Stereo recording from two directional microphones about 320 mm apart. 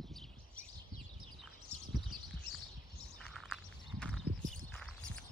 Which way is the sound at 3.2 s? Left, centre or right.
Centre.